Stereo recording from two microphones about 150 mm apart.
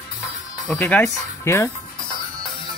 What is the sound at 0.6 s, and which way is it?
Speech, 10° left (ahead or behind).